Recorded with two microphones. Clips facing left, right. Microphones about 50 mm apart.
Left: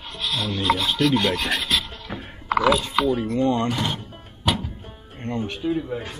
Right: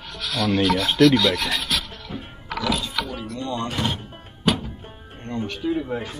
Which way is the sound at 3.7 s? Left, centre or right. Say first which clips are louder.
Even; centre.